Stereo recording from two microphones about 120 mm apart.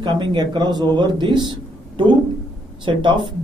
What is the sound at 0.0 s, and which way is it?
A man's voice, 40° right (ahead or behind).